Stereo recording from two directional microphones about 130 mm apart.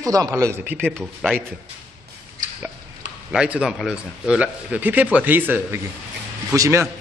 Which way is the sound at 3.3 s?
10° right (ahead or behind).